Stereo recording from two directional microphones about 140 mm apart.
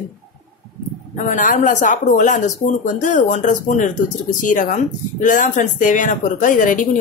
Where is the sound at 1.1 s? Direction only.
65° left (ahead or behind).